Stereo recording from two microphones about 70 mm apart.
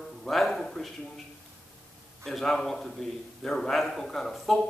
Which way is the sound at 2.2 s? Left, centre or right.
Centre.